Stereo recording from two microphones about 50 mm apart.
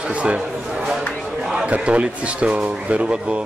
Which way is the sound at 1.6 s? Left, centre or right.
Right.